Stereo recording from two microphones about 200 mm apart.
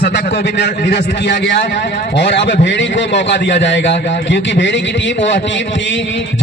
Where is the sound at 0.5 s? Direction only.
60° left (ahead or behind).